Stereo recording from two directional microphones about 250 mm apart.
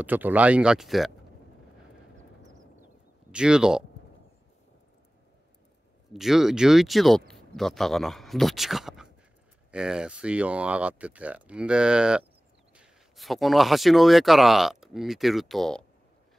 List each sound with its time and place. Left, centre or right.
0.0 s speech: centre
2.4 s clip-clop: right
3.3 s speech: centre
6.1 s speech: centre